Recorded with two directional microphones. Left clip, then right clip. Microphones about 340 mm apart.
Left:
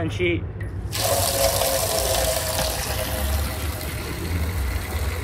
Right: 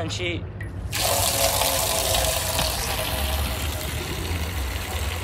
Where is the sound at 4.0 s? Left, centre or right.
Centre.